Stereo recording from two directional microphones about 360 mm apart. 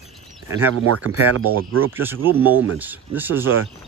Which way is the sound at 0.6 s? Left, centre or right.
Right.